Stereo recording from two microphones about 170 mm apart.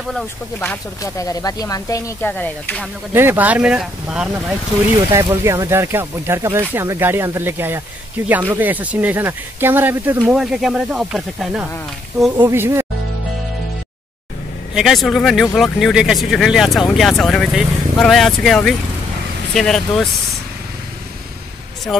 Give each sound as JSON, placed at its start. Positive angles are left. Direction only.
{"t": 0.1, "sound": "speech", "side_deg": 10}
{"t": 2.3, "sound": "speech", "side_deg": 5}
{"t": 3.1, "sound": "speech", "side_deg": -15}
{"t": 5.1, "sound": "speech", "side_deg": -15}
{"t": 12.4, "sound": "speech", "side_deg": -15}
{"t": 14.7, "sound": "speech", "side_deg": 0}